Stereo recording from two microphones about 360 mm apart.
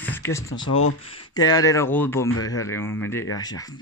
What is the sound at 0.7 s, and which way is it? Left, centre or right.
Speech, left.